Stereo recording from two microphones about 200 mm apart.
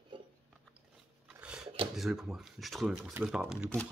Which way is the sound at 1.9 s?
Centre (ahead or behind).